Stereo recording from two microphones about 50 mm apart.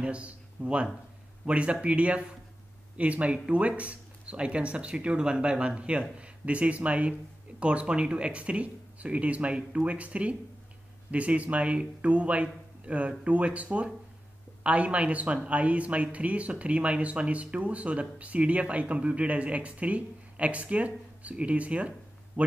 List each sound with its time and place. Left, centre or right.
0.0 s a man's voice: right